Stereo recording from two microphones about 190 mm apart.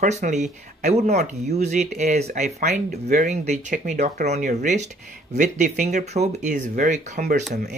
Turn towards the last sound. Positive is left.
turn(degrees=-40)  # may be behind; listen again after turning